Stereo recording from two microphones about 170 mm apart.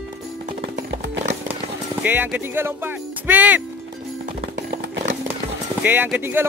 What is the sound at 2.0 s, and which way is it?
Speech, 10° right (ahead or behind).